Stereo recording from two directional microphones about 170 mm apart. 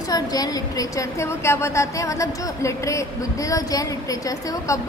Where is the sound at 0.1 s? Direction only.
20° left (ahead or behind).